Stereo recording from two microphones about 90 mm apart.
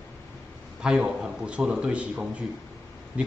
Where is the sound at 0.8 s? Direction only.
10° right (ahead or behind).